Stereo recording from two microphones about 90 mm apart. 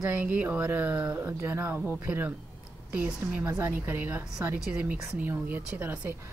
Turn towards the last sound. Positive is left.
turn(degrees=-20)  # may be behind; listen again after turning